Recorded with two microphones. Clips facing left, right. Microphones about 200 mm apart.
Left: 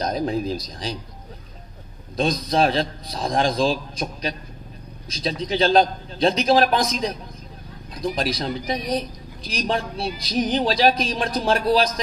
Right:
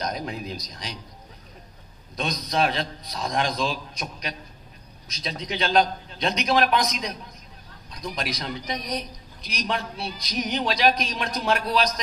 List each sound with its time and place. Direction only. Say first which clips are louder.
0.0 s speech: left 7 dB; 30° left (ahead or behind)
2.1 s a man's voice: left 5 dB; 30° left (ahead or behind)